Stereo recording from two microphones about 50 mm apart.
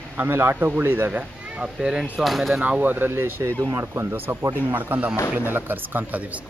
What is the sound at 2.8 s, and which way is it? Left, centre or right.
Speech, right.